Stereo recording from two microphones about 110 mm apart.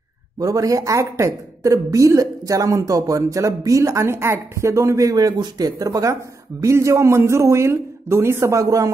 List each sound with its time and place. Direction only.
0.4 s a woman's voice: 30° right (ahead or behind)